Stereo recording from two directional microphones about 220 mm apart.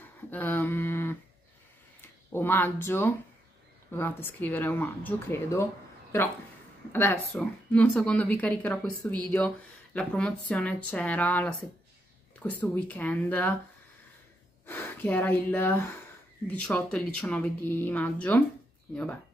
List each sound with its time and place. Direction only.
0.3 s a sound: 10° left (ahead or behind)
2.3 s speech: 10° left (ahead or behind)
6.9 s speech: 10° left (ahead or behind)
14.7 s speech: 10° left (ahead or behind)